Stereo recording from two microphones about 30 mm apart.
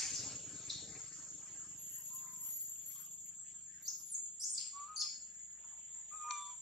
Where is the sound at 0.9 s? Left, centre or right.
Centre.